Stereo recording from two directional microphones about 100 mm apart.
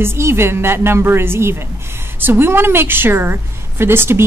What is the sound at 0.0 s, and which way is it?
Speech, 25° right (ahead or behind).